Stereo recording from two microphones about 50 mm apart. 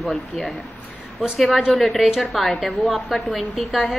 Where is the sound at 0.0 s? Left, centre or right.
Centre.